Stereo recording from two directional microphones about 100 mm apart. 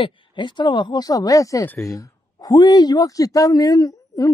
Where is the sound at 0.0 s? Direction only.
50° left (ahead or behind).